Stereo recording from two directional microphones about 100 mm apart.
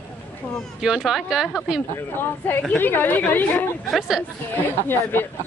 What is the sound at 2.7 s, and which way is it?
Speech, 20° left (ahead or behind).